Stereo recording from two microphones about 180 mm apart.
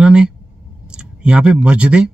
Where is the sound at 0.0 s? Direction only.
5° right (ahead or behind).